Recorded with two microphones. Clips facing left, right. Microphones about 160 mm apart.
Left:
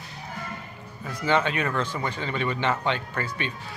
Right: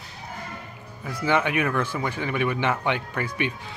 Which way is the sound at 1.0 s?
10° right (ahead or behind).